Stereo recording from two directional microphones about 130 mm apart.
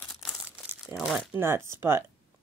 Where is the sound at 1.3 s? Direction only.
20° right (ahead or behind).